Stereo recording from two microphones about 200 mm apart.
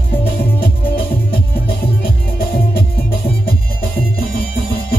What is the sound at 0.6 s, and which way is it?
Music, 50° left (ahead or behind).